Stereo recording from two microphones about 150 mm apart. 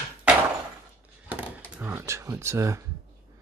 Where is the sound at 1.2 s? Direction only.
10° right (ahead or behind).